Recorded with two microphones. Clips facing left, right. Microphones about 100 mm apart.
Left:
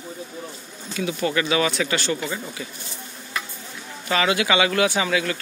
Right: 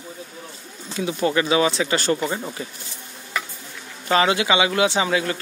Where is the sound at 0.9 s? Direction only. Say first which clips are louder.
Right 2 dB; 25° right (ahead or behind).